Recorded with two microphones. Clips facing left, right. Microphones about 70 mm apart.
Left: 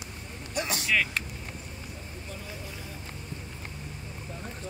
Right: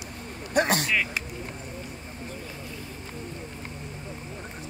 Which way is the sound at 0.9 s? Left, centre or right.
Centre.